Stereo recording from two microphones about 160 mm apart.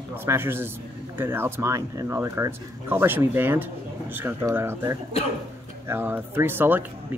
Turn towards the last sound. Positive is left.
turn(degrees=-10)  # may be behind; listen again after turning